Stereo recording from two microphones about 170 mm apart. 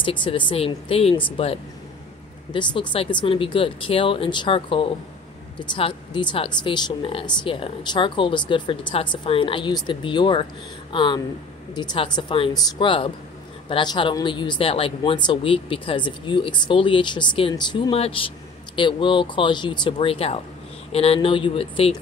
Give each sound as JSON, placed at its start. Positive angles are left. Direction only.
{"t": 0.0, "sound": "speech", "side_deg": 30}